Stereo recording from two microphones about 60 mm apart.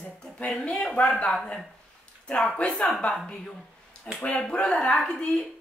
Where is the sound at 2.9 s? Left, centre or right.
Centre.